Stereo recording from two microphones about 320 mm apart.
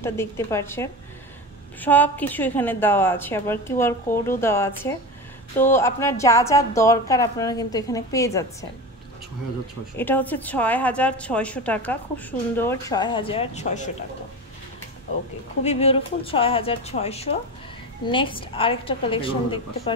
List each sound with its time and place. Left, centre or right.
0.0 s a woman's voice: centre
9.9 s a woman's voice: centre; by 13.9 s left
15.6 s a woman's voice: centre